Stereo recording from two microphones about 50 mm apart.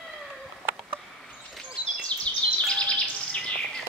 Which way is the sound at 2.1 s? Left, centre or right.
Left.